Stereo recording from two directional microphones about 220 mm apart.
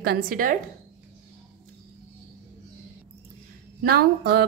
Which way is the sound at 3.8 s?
45° right (ahead or behind).